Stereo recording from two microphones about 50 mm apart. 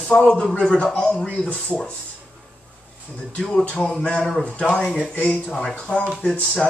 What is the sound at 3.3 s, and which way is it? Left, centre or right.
Speech, centre.